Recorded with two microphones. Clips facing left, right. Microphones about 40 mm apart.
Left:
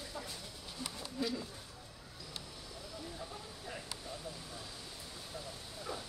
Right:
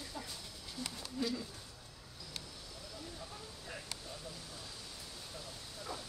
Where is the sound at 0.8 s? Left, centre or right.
Centre.